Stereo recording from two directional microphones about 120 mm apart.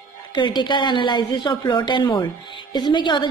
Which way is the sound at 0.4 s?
40° left (ahead or behind).